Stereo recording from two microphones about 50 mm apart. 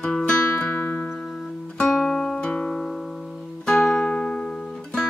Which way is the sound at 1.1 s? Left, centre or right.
Centre.